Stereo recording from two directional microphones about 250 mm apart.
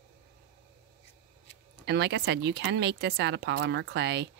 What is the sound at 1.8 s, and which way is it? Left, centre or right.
Speech, right.